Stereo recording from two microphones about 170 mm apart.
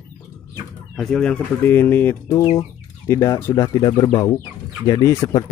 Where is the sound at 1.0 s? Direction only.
5° left (ahead or behind).